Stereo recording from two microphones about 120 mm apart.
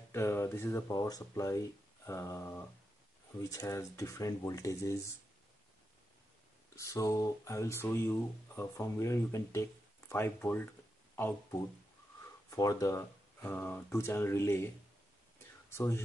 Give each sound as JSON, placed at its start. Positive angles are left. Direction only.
{"t": 0.1, "sound": "speech", "side_deg": 20}
{"t": 6.7, "sound": "speech", "side_deg": 25}
{"t": 12.4, "sound": "speech", "side_deg": 30}
{"t": 15.7, "sound": "speech", "side_deg": 20}